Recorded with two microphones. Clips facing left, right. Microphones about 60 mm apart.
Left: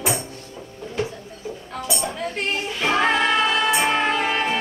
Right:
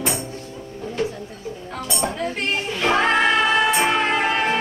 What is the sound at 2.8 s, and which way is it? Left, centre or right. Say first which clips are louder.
Music: right 1 dB; centre.